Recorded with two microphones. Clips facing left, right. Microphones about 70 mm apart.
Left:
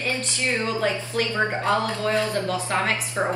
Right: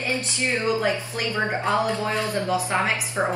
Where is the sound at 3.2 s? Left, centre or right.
Centre.